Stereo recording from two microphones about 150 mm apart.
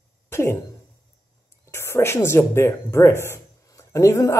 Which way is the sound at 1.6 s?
20° left (ahead or behind).